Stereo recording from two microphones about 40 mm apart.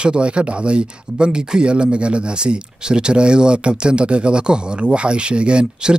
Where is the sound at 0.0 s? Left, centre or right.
Right.